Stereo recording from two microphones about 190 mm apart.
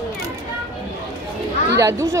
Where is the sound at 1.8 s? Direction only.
15° right (ahead or behind).